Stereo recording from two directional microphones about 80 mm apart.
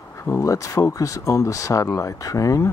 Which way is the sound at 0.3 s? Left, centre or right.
Left.